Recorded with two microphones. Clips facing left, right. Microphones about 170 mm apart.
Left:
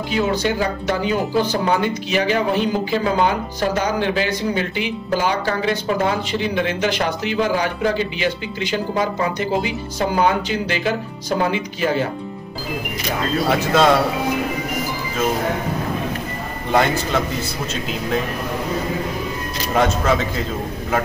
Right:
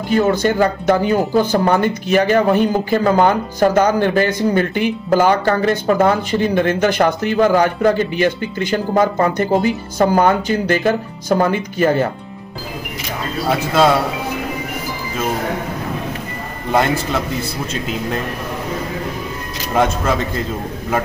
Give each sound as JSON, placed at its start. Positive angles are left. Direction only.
{"t": 0.1, "sound": "speech", "side_deg": -50}
{"t": 16.7, "sound": "speech", "side_deg": -5}
{"t": 19.7, "sound": "speech", "side_deg": 0}